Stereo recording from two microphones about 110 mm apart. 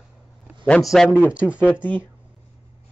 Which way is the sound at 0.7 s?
5° left (ahead or behind).